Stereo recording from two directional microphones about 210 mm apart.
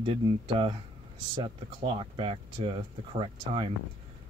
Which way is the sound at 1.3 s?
25° right (ahead or behind).